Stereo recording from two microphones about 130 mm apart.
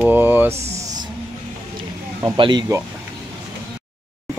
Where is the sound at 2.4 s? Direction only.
35° right (ahead or behind).